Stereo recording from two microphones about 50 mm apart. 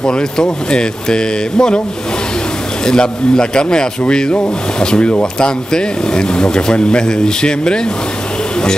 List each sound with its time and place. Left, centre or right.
0.0 s speech: centre
2.8 s speech: centre